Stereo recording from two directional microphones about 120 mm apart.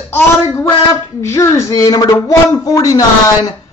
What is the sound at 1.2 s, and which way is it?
Speech, 25° left (ahead or behind).